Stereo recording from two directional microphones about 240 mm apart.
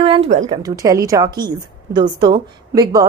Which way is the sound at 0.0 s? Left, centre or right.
Right.